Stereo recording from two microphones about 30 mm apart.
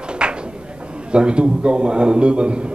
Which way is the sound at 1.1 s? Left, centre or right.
Right.